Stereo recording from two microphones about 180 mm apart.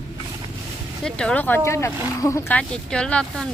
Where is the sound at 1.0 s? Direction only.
5° left (ahead or behind).